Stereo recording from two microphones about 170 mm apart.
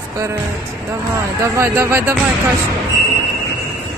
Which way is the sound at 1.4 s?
15° right (ahead or behind).